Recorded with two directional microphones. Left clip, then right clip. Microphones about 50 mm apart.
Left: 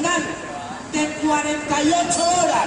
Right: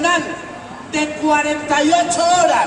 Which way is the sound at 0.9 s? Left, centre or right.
Right.